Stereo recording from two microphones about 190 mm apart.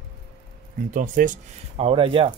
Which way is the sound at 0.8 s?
45° right (ahead or behind).